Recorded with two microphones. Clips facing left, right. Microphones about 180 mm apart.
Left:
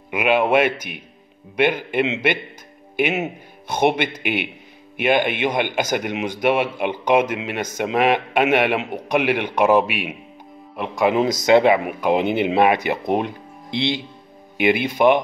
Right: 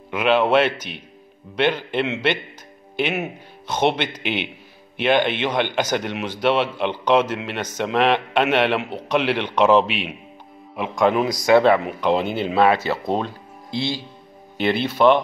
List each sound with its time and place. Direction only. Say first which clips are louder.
0.1 s speech: even; 10° left (ahead or behind)
11.1 s speech: left 3 dB; 20° left (ahead or behind)